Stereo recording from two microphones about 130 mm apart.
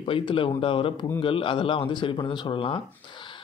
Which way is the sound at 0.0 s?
40° left (ahead or behind).